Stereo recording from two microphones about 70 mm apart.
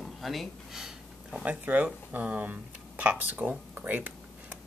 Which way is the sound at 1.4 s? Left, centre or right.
Centre.